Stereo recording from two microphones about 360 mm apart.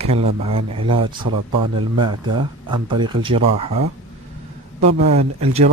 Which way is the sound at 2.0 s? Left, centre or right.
Centre.